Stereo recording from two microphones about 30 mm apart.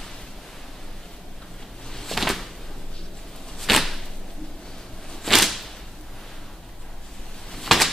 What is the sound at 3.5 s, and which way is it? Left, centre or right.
Whip, centre.